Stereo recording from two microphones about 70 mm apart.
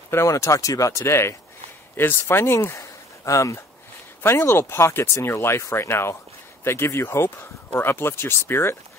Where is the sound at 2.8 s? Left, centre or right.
Left.